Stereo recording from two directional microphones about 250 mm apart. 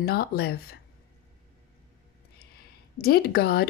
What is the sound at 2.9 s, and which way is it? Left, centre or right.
Speech, left.